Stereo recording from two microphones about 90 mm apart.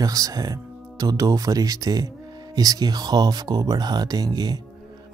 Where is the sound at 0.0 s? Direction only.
40° right (ahead or behind).